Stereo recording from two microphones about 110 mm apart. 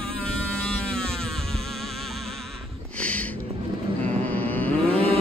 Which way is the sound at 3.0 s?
10° left (ahead or behind).